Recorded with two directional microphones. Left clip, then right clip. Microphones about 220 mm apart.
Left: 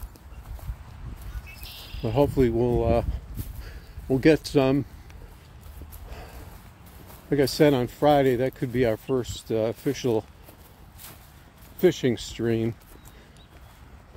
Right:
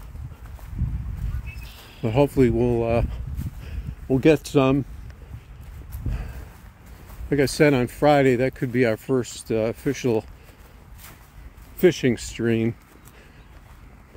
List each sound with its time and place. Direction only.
2.0 s speech: 25° right (ahead or behind)
7.2 s speech: 15° right (ahead or behind)
11.8 s speech: 20° right (ahead or behind)